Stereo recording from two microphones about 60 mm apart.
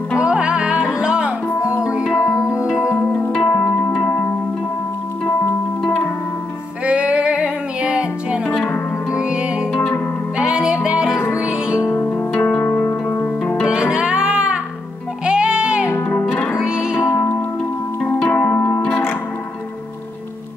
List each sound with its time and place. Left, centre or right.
0.2 s music: centre
2.1 s music: left
2.6 s music: centre
3.3 s music: centre
6.9 s music: centre
11.8 s music: left
12.4 s zither: left
12.8 s music: left
13.9 s music: centre
17.1 s music: left
18.2 s music: left